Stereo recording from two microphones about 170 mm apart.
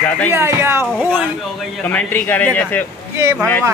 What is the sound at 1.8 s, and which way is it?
Speech, 10° left (ahead or behind).